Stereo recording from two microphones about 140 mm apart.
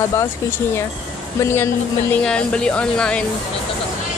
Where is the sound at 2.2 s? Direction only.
5° left (ahead or behind).